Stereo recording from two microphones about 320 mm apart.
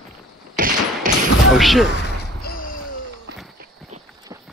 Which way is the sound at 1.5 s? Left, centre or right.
Centre.